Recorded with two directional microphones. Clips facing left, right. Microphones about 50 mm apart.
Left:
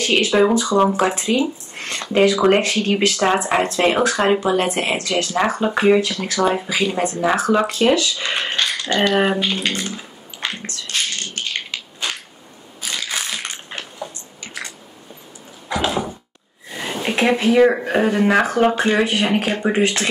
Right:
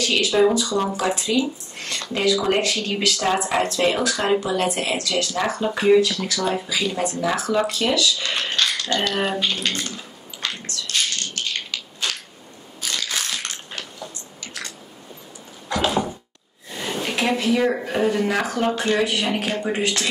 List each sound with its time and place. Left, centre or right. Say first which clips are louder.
0.0 s speech: left 2 dB; left
10.7 s a sound: left 1 dB; left
12.8 s crushing: left 1 dB; centre
15.7 s door: left 1 dB; centre
16.8 s speech: left 4 dB; left